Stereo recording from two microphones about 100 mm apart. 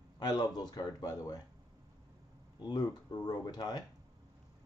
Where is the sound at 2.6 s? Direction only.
45° left (ahead or behind).